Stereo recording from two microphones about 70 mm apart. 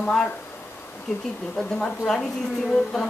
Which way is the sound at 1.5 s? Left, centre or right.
Centre.